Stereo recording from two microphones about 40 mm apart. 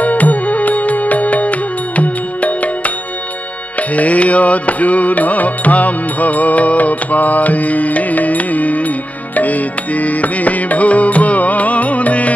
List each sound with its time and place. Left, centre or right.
0.0 s music: left
3.9 s music: left